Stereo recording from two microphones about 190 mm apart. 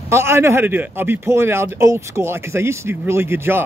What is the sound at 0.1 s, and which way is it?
A man's voice, 15° right (ahead or behind).